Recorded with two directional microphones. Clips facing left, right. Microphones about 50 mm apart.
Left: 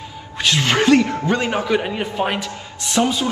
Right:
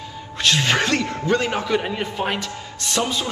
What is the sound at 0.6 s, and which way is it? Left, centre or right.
A man's voice, left.